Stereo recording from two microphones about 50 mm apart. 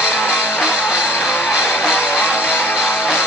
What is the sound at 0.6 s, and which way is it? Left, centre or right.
Music, centre.